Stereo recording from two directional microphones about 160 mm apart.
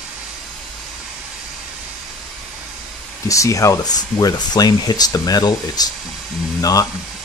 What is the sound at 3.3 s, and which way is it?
Speech, 20° left (ahead or behind).